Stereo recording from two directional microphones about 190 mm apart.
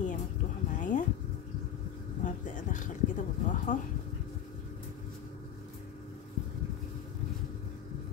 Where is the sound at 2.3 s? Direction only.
40° left (ahead or behind).